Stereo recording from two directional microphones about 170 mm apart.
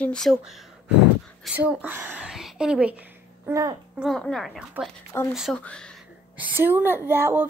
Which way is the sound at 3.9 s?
Centre (ahead or behind).